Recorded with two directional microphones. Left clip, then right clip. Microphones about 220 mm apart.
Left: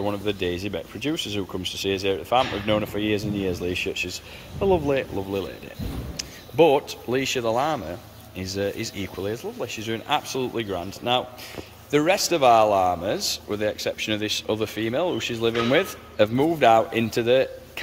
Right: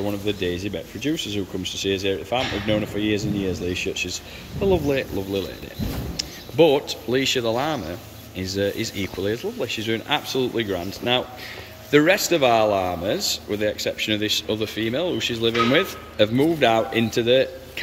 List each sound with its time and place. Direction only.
0.0 s speech: 5° left (ahead or behind)